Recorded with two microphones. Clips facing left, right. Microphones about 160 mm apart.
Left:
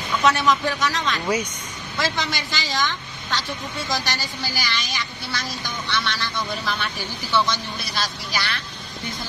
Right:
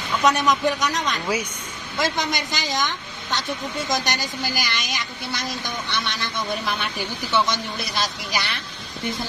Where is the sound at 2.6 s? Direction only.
20° right (ahead or behind).